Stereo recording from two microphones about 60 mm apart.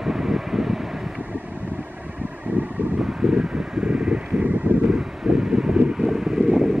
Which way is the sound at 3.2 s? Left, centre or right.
Centre.